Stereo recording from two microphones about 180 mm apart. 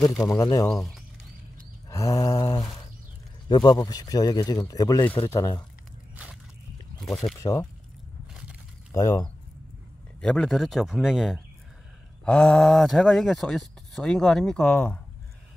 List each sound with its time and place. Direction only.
0.1 s speech: 20° left (ahead or behind)
0.7 s speech: centre (ahead or behind)
1.9 s mantra: 20° left (ahead or behind)
3.4 s speech: 25° left (ahead or behind)
7.0 s speech: centre (ahead or behind)
7.3 s speech: 20° left (ahead or behind)
8.9 s speech: 20° left (ahead or behind)
10.2 s speech: 5° left (ahead or behind)